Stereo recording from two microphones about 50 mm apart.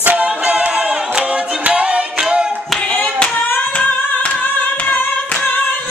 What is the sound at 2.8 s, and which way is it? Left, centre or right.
Clapping, centre.